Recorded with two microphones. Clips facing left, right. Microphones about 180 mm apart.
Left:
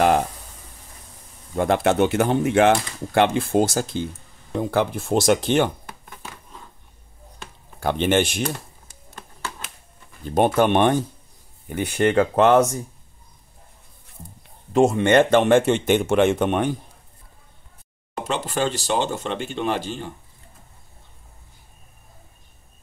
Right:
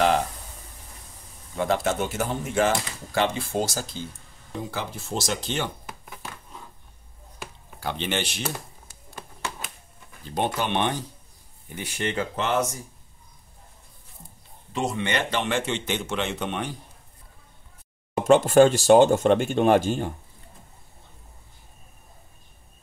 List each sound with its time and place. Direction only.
1.6 s speech: 60° left (ahead or behind)
3.2 s speech: 50° left (ahead or behind)
7.8 s speech: 50° left (ahead or behind)
10.2 s speech: 50° left (ahead or behind)
14.7 s speech: 50° left (ahead or behind)
18.2 s speech: 45° right (ahead or behind)